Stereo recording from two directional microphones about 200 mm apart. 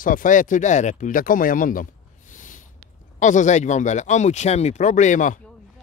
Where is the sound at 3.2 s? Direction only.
40° left (ahead or behind).